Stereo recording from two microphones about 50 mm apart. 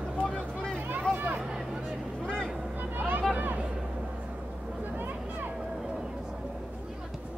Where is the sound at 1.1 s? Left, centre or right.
Right.